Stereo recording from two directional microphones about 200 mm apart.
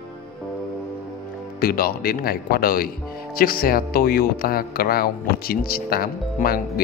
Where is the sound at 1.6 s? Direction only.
45° left (ahead or behind).